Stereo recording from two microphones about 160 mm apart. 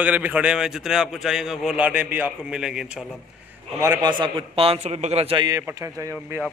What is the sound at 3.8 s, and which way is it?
A man's voice, 25° right (ahead or behind).